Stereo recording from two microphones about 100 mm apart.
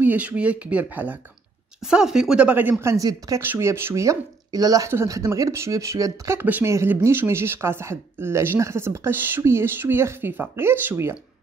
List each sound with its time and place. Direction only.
0.0 s speech: 15° right (ahead or behind)
1.8 s speech: 5° right (ahead or behind)
2.8 s speech: 30° right (ahead or behind)